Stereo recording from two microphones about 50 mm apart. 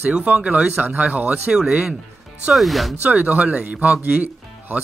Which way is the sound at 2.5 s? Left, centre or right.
Centre.